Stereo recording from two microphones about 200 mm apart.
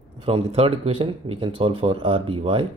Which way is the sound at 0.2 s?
30° right (ahead or behind).